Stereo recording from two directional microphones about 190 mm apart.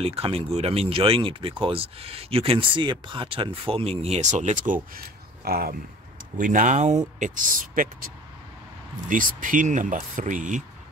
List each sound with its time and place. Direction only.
0.0 s speech: 30° right (ahead or behind)
4.9 s speech: 50° right (ahead or behind)
9.1 s speech: 45° right (ahead or behind)